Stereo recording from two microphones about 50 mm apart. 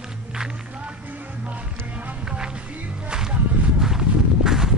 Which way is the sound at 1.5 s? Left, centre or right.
Right.